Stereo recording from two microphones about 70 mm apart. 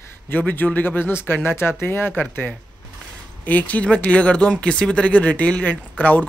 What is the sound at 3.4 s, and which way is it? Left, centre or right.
Speech, left.